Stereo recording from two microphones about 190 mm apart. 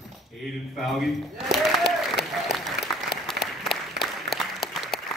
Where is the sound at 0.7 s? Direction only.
Centre (ahead or behind).